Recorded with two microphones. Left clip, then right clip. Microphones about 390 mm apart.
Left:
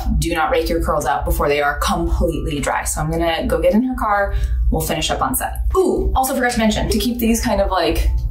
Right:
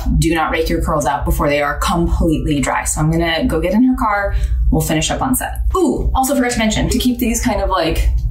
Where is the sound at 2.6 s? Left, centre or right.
Left.